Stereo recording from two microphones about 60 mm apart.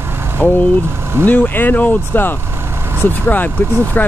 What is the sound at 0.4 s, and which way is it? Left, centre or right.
Speech, left.